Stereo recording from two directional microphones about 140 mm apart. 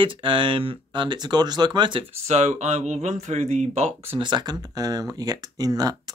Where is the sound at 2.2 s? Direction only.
50° right (ahead or behind).